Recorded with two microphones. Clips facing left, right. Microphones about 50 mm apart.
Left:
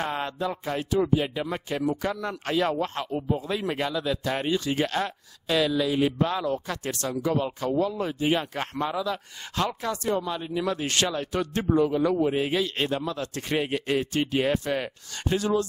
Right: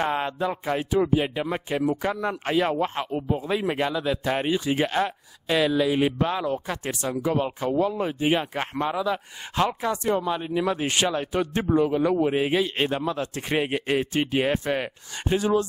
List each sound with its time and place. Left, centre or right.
0.0 s speech: centre